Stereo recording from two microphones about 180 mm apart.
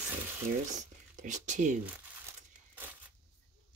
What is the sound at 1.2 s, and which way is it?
Speech, 40° right (ahead or behind).